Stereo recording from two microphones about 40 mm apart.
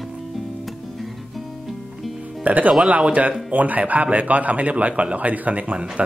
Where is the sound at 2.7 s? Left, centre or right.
Right.